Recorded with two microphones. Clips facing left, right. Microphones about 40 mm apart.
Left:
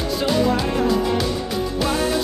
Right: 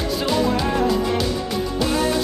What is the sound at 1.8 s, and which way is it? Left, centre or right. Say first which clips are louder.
Music: even; centre.